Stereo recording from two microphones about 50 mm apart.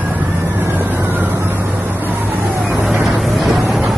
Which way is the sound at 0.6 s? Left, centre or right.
Right.